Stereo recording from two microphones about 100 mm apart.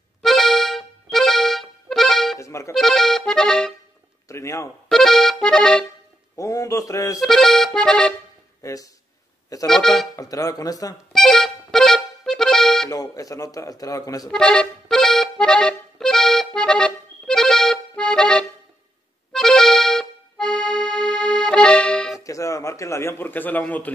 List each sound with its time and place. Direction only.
0.2 s accordion: centre (ahead or behind)
2.3 s accordion: 30° left (ahead or behind)
2.7 s accordion: 5° left (ahead or behind)
4.3 s speech: 30° left (ahead or behind)
4.8 s accordion: 5° left (ahead or behind)
6.3 s speech: 35° left (ahead or behind)
7.2 s accordion: 5° left (ahead or behind)
8.6 s speech: 35° left (ahead or behind)
9.7 s accordion: 5° left (ahead or behind)
10.1 s speech: 35° left (ahead or behind)
11.1 s accordion: 5° left (ahead or behind)
12.9 s speech: 35° left (ahead or behind)
14.3 s accordion: 10° left (ahead or behind)
22.2 s a man's voice: 30° left (ahead or behind); by 23.9 s 15° left (ahead or behind)